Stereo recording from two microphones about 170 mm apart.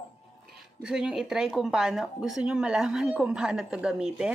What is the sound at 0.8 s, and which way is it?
Speech, 5° right (ahead or behind).